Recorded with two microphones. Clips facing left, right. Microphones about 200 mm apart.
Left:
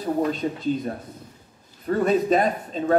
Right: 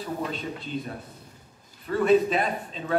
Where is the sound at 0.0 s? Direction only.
40° left (ahead or behind).